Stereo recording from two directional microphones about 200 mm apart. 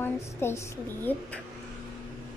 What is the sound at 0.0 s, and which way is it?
A woman's voice, 10° left (ahead or behind).